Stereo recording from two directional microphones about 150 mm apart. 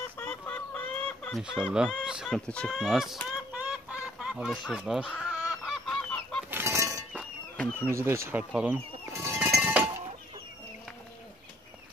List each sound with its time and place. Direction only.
0.2 s chicken: 10° left (ahead or behind)
1.4 s speech: 5° right (ahead or behind)
5.2 s chicken: 5° right (ahead or behind)
6.5 s a sound: 15° right (ahead or behind)
7.5 s speech: 10° left (ahead or behind)
7.9 s speech: 20° right (ahead or behind)
9.1 s a sound: 20° right (ahead or behind)